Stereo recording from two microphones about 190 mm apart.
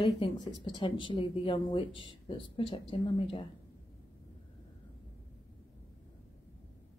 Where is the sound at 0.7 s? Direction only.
25° left (ahead or behind).